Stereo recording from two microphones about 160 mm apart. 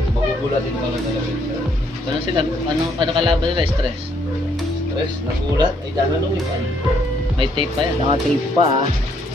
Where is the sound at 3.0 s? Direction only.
30° right (ahead or behind).